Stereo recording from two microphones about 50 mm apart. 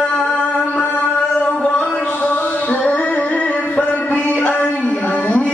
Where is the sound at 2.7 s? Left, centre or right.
Left.